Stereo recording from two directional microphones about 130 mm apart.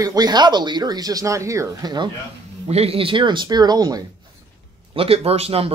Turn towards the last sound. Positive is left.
turn(degrees=-50)  # may be behind; listen again after turning